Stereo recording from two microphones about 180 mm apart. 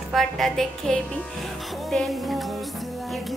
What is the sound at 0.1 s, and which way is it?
A woman's voice, centre (ahead or behind).